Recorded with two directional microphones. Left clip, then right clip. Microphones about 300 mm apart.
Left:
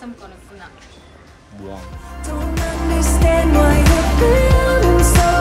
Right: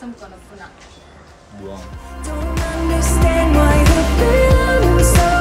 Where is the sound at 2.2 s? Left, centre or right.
Centre.